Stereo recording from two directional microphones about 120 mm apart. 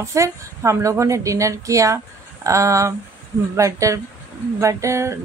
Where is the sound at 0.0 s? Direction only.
25° right (ahead or behind).